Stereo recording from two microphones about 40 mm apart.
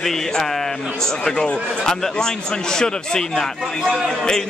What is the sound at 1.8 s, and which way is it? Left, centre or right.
A man's voice, centre.